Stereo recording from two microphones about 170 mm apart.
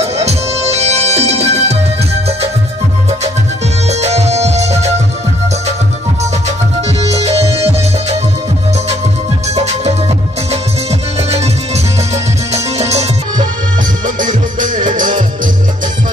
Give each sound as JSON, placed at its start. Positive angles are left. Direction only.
{"t": 0.0, "sound": "music", "side_deg": -40}
{"t": 3.9, "sound": "music", "side_deg": -40}
{"t": 9.5, "sound": "music", "side_deg": -40}
{"t": 14.0, "sound": "music", "side_deg": -50}